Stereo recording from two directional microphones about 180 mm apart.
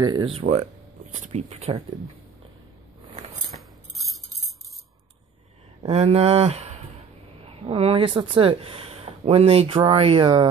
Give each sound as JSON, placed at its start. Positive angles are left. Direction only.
{"t": 0.0, "sound": "speech", "side_deg": -25}
{"t": 3.5, "sound": "tambourine", "side_deg": 0}
{"t": 5.8, "sound": "speech", "side_deg": -35}